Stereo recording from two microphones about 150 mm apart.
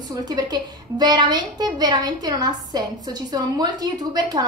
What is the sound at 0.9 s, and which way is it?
A woman's voice, 30° right (ahead or behind).